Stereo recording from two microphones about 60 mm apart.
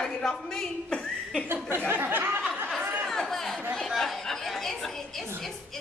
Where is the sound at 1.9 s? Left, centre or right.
Right.